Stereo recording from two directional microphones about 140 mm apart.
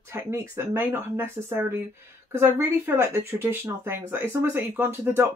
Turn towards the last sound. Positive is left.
turn(degrees=-15)  # may be behind; listen again after turning